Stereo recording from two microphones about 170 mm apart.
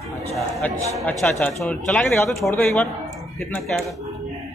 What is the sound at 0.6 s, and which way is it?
A man's voice, 10° left (ahead or behind).